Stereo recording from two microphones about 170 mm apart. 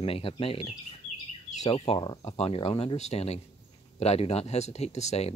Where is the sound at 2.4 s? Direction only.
35° left (ahead or behind).